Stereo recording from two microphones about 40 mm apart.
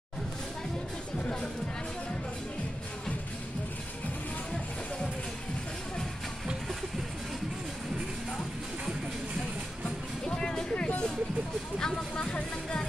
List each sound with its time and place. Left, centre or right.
10.2 s music: centre
11.8 s music: left